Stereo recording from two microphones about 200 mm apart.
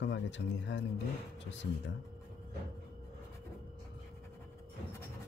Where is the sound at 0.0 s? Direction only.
65° left (ahead or behind).